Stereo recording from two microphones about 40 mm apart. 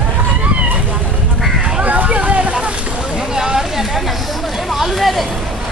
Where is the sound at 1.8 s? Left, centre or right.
Right.